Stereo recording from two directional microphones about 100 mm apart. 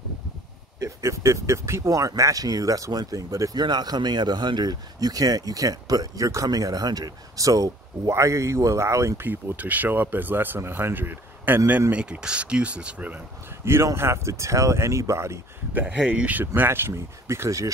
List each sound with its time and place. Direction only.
0.7 s speech: 30° right (ahead or behind)
9.3 s speech: 15° right (ahead or behind)
13.7 s speech: 25° right (ahead or behind)
15.7 s speech: 15° right (ahead or behind); by 17.6 s 30° right (ahead or behind)